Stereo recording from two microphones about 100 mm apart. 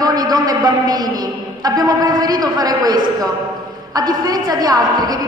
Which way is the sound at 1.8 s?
40° right (ahead or behind).